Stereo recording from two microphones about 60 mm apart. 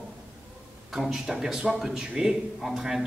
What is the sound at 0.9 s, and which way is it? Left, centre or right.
A woman's voice, centre.